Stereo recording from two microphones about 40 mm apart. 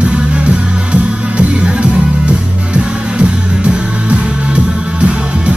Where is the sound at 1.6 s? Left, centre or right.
Right.